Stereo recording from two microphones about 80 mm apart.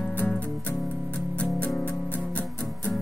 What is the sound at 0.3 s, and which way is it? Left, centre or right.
Music, centre.